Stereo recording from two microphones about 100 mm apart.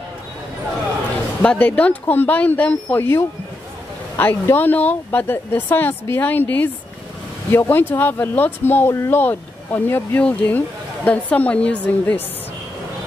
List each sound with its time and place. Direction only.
1.4 s speech: 10° left (ahead or behind)